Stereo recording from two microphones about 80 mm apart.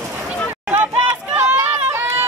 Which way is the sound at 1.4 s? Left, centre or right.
Right.